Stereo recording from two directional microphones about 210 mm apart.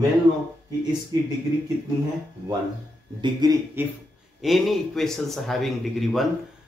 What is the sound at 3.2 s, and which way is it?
Speech, 15° right (ahead or behind).